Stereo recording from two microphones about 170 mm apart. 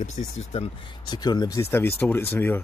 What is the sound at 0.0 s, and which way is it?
Speech, 40° left (ahead or behind).